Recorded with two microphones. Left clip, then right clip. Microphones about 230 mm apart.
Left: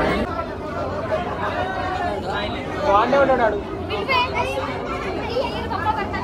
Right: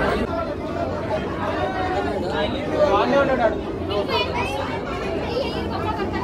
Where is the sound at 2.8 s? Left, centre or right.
Left.